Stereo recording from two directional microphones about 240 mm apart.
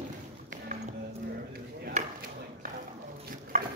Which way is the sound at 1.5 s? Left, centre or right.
Right.